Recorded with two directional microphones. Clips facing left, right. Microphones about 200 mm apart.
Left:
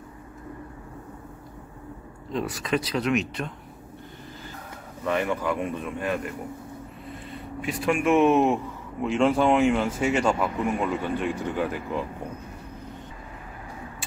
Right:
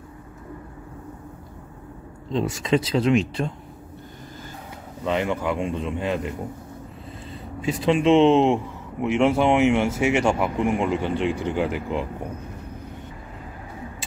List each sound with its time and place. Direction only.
2.3 s a man's voice: 25° right (ahead or behind)
5.0 s a man's voice: 20° right (ahead or behind)
7.6 s a man's voice: 25° right (ahead or behind)
10.2 s a man's voice: 25° right (ahead or behind)